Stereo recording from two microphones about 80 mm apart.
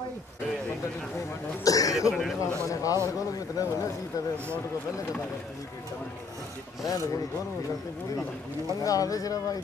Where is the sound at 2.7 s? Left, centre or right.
Left.